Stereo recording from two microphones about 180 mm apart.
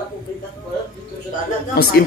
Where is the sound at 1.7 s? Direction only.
55° left (ahead or behind).